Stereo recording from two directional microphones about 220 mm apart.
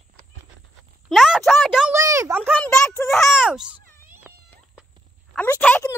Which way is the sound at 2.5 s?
5° left (ahead or behind).